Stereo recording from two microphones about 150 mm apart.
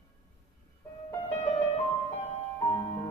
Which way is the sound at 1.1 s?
15° left (ahead or behind).